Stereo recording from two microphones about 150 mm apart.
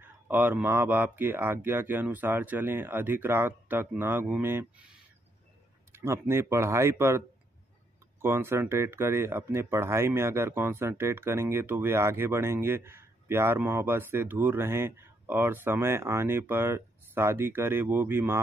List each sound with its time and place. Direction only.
0.0 s speech: 15° right (ahead or behind)
5.9 s speech: 15° right (ahead or behind)